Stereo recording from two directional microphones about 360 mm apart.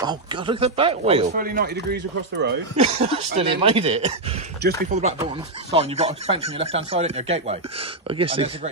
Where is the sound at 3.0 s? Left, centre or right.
Centre.